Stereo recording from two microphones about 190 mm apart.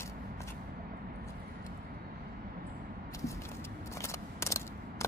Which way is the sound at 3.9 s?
15° left (ahead or behind).